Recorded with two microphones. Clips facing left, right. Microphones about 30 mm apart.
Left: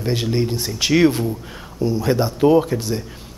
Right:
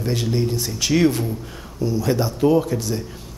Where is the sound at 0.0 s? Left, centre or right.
Left.